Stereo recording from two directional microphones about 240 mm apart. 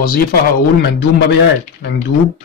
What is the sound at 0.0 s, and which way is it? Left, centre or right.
Speech, left.